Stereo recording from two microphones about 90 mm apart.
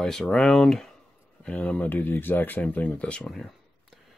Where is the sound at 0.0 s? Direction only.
5° left (ahead or behind).